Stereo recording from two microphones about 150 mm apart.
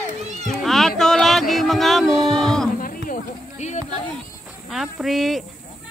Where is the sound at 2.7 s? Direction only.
70° left (ahead or behind); by 4.0 s 50° left (ahead or behind).